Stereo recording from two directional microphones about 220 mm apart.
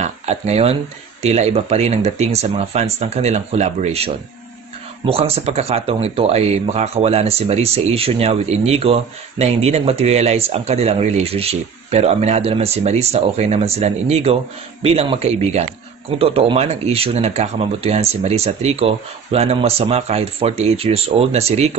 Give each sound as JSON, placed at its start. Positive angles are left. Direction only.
{"t": 0.0, "sound": "speech", "side_deg": -30}